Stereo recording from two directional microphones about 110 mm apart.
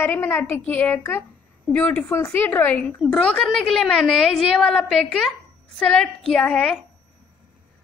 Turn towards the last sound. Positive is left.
turn(degrees=10)  # may be behind; listen again after turning